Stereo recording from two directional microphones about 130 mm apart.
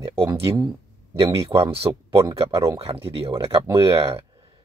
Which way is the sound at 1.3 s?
20° right (ahead or behind).